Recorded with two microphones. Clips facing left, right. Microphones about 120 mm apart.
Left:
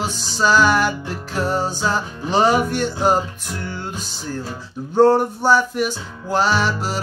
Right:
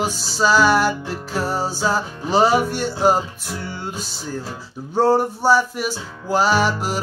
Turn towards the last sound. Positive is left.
turn(degrees=-10)  # may be behind; listen again after turning